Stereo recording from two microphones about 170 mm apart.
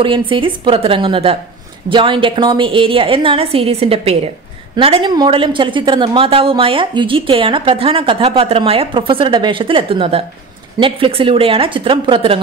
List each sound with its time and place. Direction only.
0.3 s a woman's voice: 30° right (ahead or behind)